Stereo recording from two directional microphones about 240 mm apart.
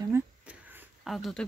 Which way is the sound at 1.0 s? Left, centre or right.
Centre.